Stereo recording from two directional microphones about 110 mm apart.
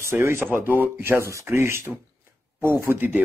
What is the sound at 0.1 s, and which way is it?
Speech, 20° right (ahead or behind).